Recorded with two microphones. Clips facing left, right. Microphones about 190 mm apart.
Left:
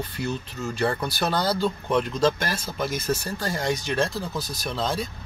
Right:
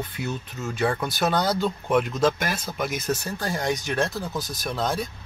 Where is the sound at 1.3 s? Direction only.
20° right (ahead or behind).